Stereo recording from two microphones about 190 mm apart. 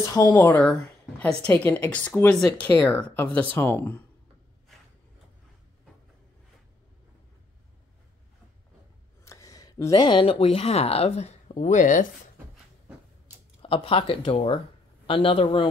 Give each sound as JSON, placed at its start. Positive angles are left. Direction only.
{"t": 0.0, "sound": "speech", "side_deg": 15}
{"t": 9.2, "sound": "speech", "side_deg": 15}
{"t": 13.6, "sound": "speech", "side_deg": 30}